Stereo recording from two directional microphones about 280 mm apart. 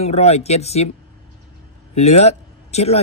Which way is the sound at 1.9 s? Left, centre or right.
Left.